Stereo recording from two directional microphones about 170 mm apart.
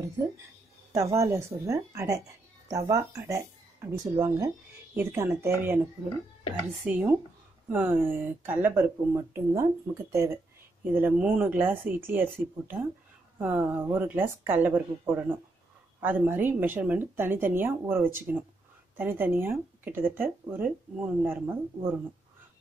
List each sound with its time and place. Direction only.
0.9 s speech: 20° right (ahead or behind)
6.8 s speech: 5° right (ahead or behind)